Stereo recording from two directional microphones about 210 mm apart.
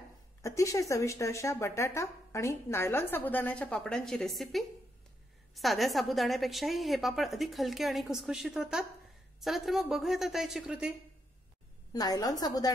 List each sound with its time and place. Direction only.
0.4 s a woman's voice: 15° left (ahead or behind); by 11.0 s 5° right (ahead or behind)
11.9 s speech: 20° left (ahead or behind)